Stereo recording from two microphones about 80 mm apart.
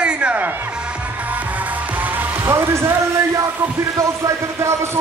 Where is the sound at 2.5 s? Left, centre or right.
Right.